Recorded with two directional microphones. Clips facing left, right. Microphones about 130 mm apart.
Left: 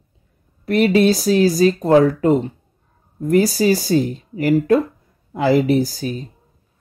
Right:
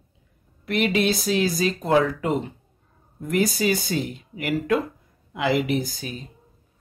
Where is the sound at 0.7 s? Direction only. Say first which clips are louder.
Left 8 dB; 35° left (ahead or behind).